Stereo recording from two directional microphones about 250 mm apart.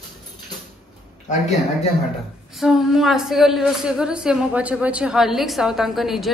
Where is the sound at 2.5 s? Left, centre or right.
Centre.